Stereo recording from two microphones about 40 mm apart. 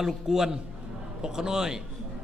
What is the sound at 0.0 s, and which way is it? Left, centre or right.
A man's voice, centre.